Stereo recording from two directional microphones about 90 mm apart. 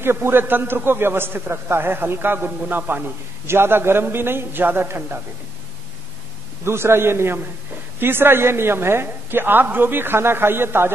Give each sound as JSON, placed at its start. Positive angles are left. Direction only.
{"t": 0.0, "sound": "a woman's voice", "side_deg": -25}
{"t": 6.6, "sound": "a woman's voice", "side_deg": -30}